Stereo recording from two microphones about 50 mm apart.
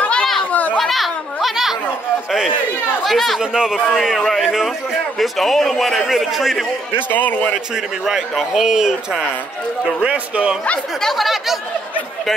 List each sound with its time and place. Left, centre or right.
0.5 s children playing: left
0.7 s a sound: centre
3.1 s a man's voice: centre
3.3 s a man's voice: centre
5.2 s a man's voice: centre
7.1 s a man's voice: left
8.0 s a man's voice: centre
10.0 s speech: right
11.0 s a man's voice: centre